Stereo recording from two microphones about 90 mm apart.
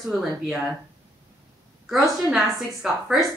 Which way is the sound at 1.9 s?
Centre (ahead or behind).